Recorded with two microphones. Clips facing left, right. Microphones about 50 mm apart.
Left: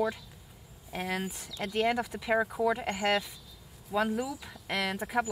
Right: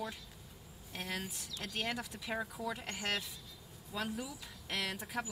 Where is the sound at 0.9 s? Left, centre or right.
Centre.